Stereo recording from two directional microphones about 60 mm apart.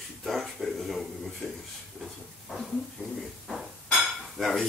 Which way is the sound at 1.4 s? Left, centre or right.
Centre.